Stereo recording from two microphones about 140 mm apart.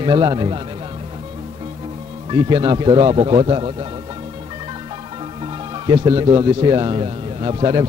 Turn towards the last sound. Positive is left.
turn(degrees=-35)  # may be behind; listen again after turning